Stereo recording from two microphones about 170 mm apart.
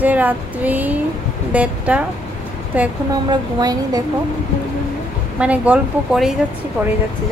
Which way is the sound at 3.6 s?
20° right (ahead or behind).